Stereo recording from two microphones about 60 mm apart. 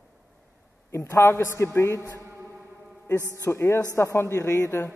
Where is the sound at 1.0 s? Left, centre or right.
Left.